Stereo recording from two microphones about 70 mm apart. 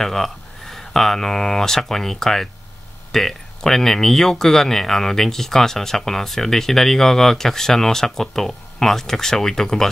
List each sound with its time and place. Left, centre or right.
0.0 s speech: centre